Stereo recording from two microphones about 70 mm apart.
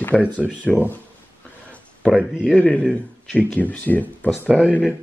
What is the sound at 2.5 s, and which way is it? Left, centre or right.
Speech, centre.